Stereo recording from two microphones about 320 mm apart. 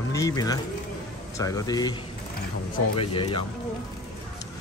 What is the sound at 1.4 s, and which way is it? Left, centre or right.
Speech, centre.